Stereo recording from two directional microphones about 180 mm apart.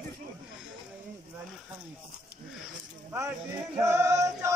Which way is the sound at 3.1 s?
10° right (ahead or behind).